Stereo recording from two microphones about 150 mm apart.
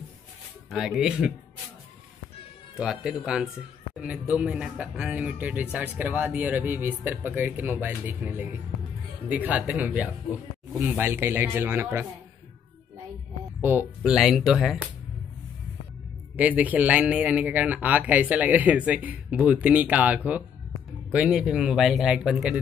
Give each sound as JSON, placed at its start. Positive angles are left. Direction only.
{"t": 0.7, "sound": "speech", "side_deg": -5}
{"t": 2.8, "sound": "speech", "side_deg": -5}
{"t": 13.6, "sound": "speech", "side_deg": -15}
{"t": 16.3, "sound": "speech", "side_deg": -10}